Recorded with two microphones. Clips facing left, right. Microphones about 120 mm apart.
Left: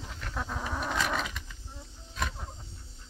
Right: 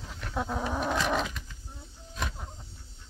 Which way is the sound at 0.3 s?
15° right (ahead or behind).